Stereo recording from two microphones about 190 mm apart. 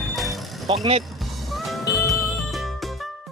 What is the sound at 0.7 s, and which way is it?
Speech, 25° right (ahead or behind).